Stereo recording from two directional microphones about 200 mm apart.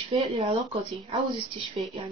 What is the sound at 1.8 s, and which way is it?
Speech, 30° right (ahead or behind).